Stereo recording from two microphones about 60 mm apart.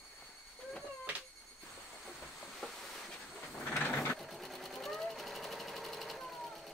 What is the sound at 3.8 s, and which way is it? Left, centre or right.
Sewing machine, left.